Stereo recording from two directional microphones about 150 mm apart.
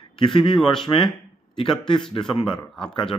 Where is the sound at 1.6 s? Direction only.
35° left (ahead or behind).